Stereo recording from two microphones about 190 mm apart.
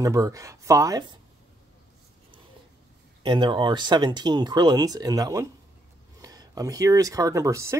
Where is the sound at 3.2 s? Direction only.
25° right (ahead or behind).